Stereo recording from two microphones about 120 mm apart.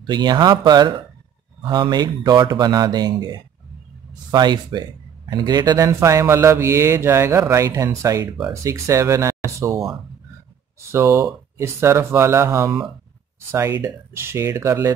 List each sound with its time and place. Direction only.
0.0 s speech: 35° right (ahead or behind)
10.8 s speech: 25° right (ahead or behind)